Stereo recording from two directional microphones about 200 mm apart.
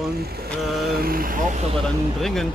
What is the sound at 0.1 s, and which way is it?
Vehicle, 50° right (ahead or behind).